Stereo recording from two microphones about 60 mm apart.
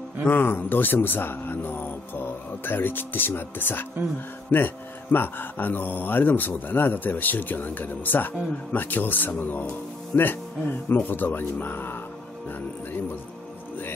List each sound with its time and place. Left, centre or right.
0.3 s speech: left